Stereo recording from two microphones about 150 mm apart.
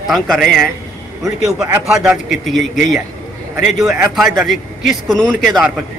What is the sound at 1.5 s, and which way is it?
Speech, 20° right (ahead or behind).